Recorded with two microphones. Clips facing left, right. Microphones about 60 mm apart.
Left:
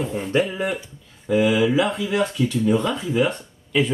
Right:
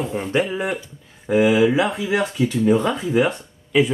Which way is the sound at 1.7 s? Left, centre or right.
Centre.